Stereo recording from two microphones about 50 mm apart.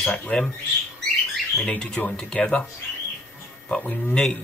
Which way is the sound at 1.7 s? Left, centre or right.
Left.